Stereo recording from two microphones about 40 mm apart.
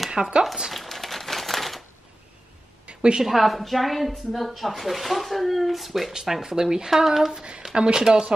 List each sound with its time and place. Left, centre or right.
0.1 s speech: centre
0.7 s crumpling: centre
2.9 s a sound: right
3.2 s a woman's voice: centre
7.7 s speech: right